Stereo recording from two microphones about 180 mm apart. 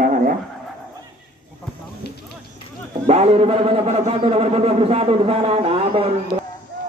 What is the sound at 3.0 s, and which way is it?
A man's voice, 35° right (ahead or behind).